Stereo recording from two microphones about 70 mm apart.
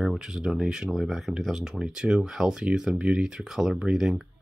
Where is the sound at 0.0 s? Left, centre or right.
Centre.